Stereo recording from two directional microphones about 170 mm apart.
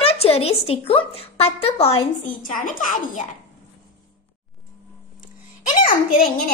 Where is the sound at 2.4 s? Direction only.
55° left (ahead or behind).